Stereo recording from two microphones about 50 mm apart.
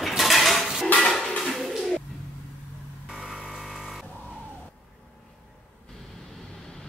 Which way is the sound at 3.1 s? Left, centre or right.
Centre.